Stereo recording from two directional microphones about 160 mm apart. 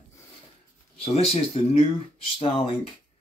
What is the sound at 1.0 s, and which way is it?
Speech, 40° left (ahead or behind).